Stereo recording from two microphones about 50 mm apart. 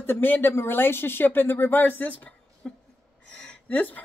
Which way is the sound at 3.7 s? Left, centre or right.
Left.